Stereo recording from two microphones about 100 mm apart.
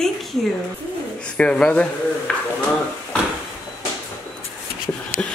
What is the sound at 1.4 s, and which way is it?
Speech, 10° left (ahead or behind).